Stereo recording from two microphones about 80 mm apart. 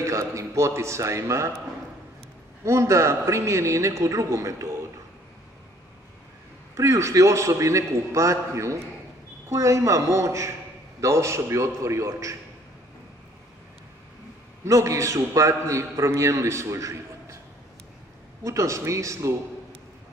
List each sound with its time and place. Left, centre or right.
0.0 s a man's voice: right
2.6 s a man's voice: right
6.8 s a man's voice: right
14.6 s a man's voice: right
18.4 s a man's voice: right